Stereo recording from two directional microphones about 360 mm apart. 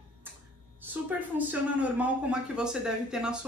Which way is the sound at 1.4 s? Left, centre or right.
Centre.